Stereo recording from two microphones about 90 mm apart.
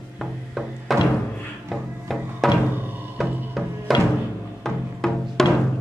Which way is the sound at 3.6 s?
Centre (ahead or behind).